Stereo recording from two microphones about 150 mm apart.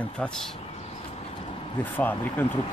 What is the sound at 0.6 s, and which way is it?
Vehicle, 45° left (ahead or behind).